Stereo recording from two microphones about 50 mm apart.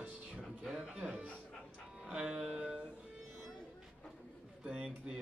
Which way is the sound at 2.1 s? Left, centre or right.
Centre.